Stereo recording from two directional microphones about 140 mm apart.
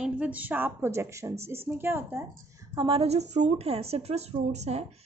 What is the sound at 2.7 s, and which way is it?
A woman's voice, 40° right (ahead or behind).